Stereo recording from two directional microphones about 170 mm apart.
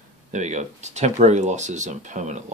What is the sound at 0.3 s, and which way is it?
Speech, 45° right (ahead or behind).